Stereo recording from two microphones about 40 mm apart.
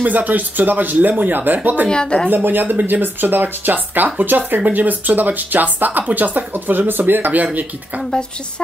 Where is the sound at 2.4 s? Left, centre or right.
Right.